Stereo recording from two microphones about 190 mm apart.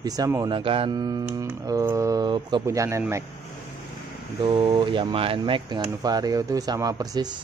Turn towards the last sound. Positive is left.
turn(degrees=-20)  # may be behind; listen again after turning